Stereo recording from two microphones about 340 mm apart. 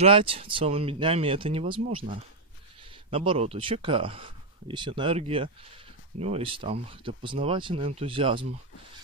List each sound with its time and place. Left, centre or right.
0.0 s speech: centre